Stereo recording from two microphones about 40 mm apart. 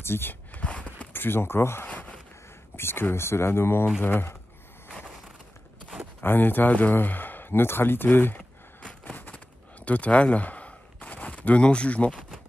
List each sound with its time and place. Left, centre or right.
0.0 s speech: left
0.6 s a sound: left
1.1 s speech: left
1.9 s a sound: left
2.7 s speech: left
4.0 s speech: left
6.2 s speech: left
8.1 s speech: left
9.1 s a sound: left